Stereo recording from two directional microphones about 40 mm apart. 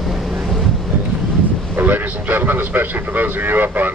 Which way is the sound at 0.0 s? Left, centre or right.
Centre.